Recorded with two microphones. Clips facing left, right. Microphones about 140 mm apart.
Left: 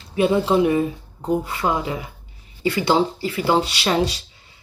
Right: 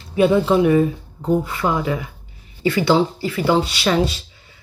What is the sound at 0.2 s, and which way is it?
Speech, 25° left (ahead or behind).